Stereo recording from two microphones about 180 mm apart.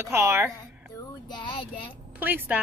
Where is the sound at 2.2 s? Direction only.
10° right (ahead or behind).